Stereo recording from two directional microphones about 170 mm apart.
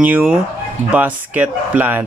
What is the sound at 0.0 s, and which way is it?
Speech, 5° right (ahead or behind).